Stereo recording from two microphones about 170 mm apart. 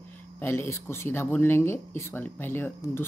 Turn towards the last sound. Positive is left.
turn(degrees=15)  # may be behind; listen again after turning